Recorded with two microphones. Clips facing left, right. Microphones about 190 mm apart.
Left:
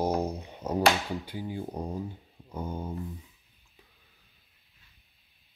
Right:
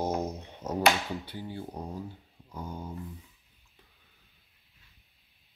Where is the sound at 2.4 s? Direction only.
25° left (ahead or behind).